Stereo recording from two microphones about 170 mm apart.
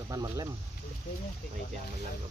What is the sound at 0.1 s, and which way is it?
Speech, 20° right (ahead or behind).